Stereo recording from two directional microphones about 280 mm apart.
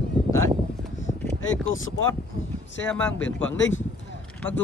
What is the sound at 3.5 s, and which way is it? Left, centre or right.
Speech, left.